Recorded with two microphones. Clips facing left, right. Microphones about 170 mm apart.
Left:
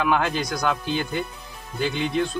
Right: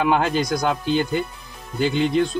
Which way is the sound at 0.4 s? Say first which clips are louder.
Right 3 dB; 45° right (ahead or behind).